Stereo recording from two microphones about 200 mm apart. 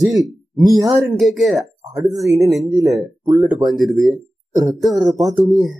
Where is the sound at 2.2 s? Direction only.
15° right (ahead or behind).